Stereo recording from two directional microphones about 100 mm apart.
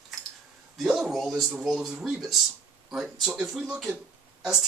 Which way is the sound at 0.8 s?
5° right (ahead or behind).